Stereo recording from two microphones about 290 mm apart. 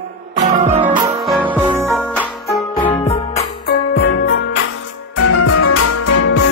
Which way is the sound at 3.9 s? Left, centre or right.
Left.